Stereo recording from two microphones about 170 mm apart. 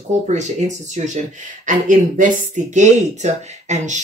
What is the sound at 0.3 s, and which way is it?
Speech, 45° right (ahead or behind).